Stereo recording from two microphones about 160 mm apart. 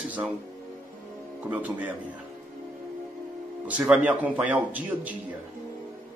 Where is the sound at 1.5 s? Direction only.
10° right (ahead or behind).